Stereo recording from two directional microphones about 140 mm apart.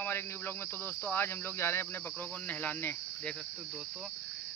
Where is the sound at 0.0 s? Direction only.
15° left (ahead or behind).